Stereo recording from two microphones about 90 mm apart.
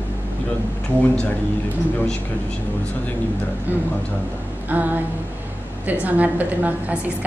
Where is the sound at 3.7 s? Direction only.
20° right (ahead or behind).